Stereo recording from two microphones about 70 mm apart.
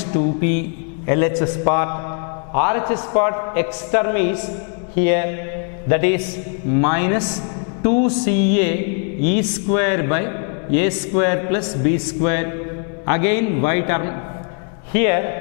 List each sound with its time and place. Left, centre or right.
0.0 s a woman's voice: centre